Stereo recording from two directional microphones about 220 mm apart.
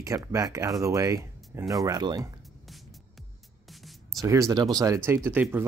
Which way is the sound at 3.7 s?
Centre (ahead or behind).